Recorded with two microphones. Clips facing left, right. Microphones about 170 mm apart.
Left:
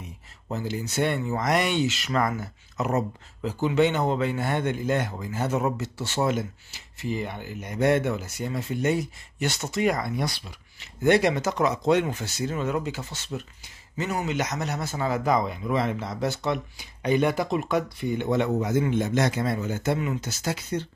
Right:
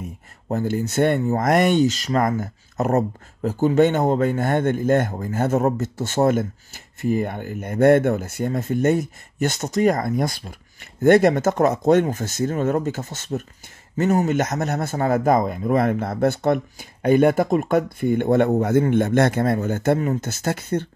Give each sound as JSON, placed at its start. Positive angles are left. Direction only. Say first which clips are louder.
{"t": 0.0, "sound": "speech", "louder": "right 8 dB", "side_deg": -50}